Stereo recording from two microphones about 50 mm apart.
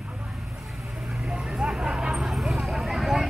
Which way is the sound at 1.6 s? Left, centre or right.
Centre.